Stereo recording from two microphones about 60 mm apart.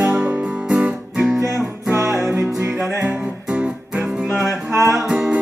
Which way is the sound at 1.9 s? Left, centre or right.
Right.